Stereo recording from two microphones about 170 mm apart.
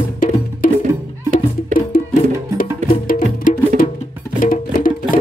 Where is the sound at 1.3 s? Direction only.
55° left (ahead or behind).